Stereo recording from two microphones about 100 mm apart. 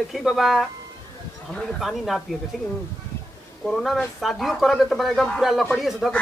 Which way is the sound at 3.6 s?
Centre (ahead or behind).